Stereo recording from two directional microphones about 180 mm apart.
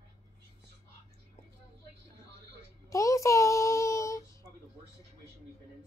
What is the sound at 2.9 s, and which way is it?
Child singing, 20° left (ahead or behind).